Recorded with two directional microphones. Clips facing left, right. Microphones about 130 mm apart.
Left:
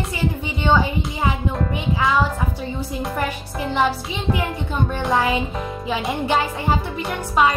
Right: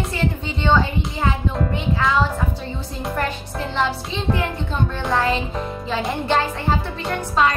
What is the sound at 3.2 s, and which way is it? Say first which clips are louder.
Speech: even; 15° left (ahead or behind).